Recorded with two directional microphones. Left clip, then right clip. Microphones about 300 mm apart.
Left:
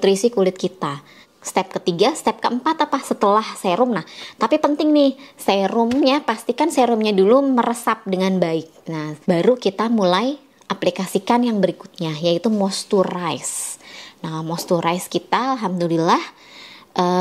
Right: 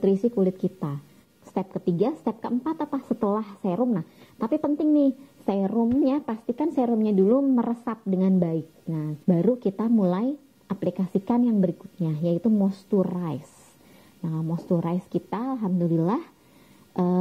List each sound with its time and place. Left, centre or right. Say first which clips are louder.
0.0 s a woman's voice: left 7 dB; centre
12.4 s speech: left 6 dB; centre
14.3 s speech: left 8 dB; centre
14.9 s speech: left 10 dB; centre
16.9 s a sound: left 8 dB; centre